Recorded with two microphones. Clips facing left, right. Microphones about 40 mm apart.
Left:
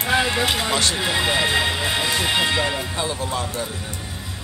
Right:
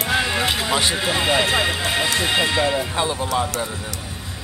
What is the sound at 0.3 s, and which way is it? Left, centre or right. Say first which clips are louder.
Speech: even; centre.